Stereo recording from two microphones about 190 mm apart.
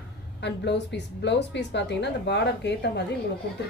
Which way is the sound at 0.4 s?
65° left (ahead or behind).